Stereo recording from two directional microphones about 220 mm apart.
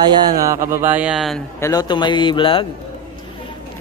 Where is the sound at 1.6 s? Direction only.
15° left (ahead or behind).